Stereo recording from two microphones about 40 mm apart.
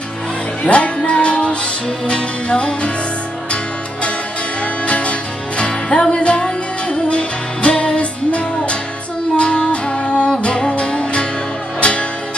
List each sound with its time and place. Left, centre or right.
0.7 s music: left
4.8 s music: left